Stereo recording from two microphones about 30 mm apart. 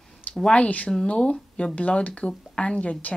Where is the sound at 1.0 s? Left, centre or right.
Left.